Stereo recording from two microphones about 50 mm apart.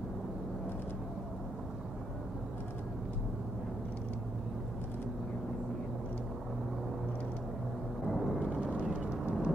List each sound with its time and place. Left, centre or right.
8.1 s thunder: centre
8.6 s vehicle: right